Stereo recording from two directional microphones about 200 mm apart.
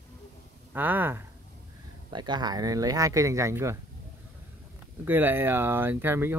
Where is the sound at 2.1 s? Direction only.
20° right (ahead or behind).